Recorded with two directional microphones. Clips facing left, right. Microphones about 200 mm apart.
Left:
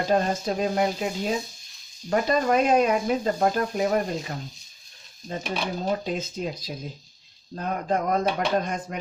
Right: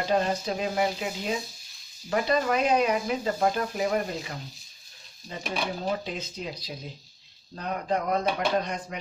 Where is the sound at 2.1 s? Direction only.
45° left (ahead or behind).